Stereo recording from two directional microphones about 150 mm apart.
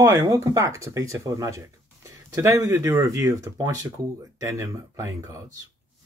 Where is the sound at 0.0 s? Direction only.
20° right (ahead or behind).